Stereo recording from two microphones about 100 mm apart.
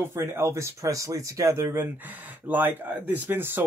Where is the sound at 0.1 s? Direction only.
25° right (ahead or behind).